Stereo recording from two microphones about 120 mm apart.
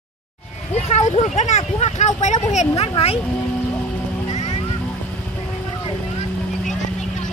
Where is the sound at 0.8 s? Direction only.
70° left (ahead or behind).